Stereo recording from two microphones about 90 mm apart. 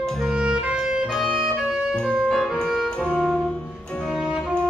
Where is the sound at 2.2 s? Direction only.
5° left (ahead or behind).